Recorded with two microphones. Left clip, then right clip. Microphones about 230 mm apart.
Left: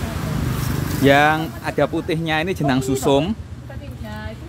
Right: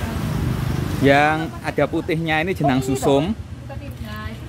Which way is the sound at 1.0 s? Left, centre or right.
Centre.